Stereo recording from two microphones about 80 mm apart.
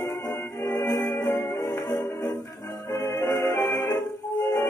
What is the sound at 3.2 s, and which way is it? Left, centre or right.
Music, left.